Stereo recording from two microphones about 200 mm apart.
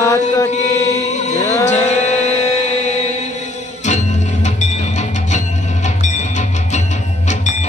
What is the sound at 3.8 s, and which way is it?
Music, 35° left (ahead or behind).